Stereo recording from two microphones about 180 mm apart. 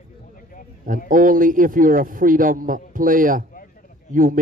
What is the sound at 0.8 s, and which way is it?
Speech, 50° right (ahead or behind).